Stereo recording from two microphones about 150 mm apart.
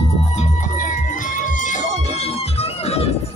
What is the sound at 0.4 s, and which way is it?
Music, 60° left (ahead or behind).